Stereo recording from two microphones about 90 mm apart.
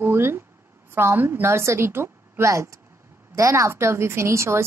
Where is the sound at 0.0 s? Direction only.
25° right (ahead or behind).